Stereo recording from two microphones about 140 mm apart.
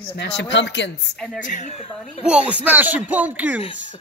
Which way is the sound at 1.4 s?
60° left (ahead or behind).